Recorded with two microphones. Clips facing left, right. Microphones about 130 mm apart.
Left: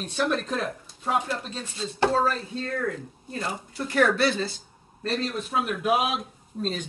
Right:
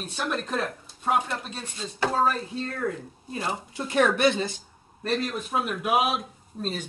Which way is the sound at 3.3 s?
20° right (ahead or behind).